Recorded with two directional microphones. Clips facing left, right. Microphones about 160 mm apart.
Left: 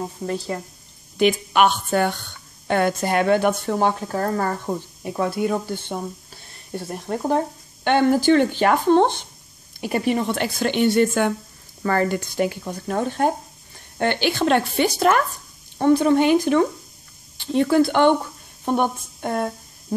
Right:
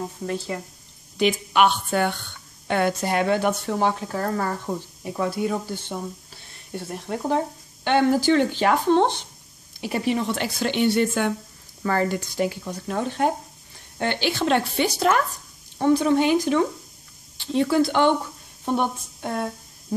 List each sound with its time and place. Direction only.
1.1 s speech: 55° left (ahead or behind)
5.0 s speech: 55° left (ahead or behind)
6.7 s speech: 45° left (ahead or behind)
7.8 s speech: 55° left (ahead or behind)